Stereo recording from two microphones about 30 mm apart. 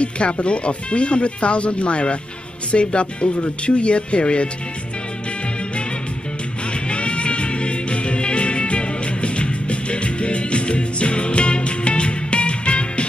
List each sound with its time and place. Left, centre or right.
0.0 s speech: left
6.7 s music: left